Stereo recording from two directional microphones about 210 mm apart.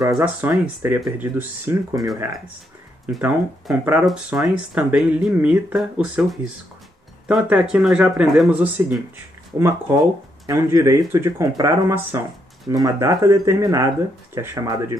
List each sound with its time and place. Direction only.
0.1 s speech: 5° right (ahead or behind)
3.1 s speech: 5° right (ahead or behind)